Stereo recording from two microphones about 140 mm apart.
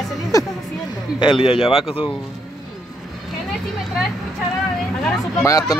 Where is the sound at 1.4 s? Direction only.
40° left (ahead or behind).